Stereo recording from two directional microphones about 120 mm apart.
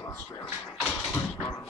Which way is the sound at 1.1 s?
20° left (ahead or behind).